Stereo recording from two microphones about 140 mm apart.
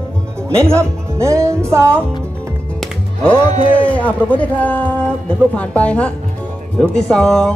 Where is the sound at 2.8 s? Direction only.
10° left (ahead or behind).